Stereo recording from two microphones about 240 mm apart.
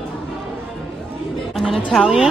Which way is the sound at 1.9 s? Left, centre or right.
Centre.